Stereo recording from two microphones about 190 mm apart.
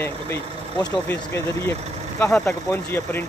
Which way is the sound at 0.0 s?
10° left (ahead or behind).